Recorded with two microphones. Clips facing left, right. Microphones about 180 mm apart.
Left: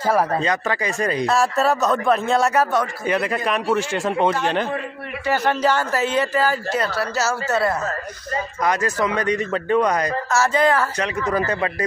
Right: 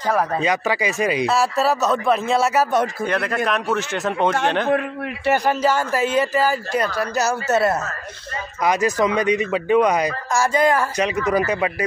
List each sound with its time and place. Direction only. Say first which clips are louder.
0.4 s speech: right 2 dB; 10° right (ahead or behind); by 4.3 s 10° left (ahead or behind)
4.6 s a man's voice: right 7 dB; 70° right (ahead or behind)
5.3 s a man's voice: right 1 dB; 10° right (ahead or behind)